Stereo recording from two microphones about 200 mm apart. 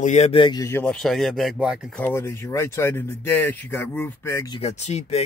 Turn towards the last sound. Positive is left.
turn(degrees=30)  # may be behind; listen again after turning